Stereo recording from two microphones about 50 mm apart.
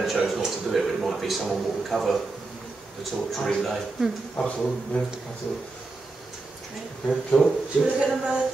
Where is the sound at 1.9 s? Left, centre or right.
Centre.